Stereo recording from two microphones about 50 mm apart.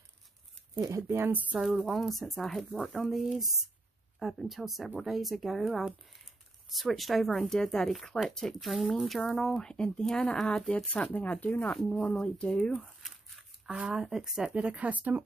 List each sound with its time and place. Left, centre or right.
0.8 s speech: right
1.9 s speech: centre
10.9 s speech: left
11.7 s speech: centre
12.8 s crumpling: centre
13.7 s speech: right
14.0 s speech: centre
14.5 s speech: right